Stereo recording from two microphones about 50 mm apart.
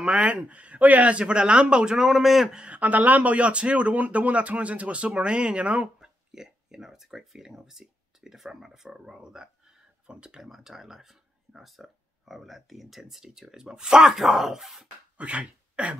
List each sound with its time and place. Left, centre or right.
0.2 s speech: right; by 2.5 s centre
2.5 s speech: right
5.9 s speech: centre
15.1 s speech: right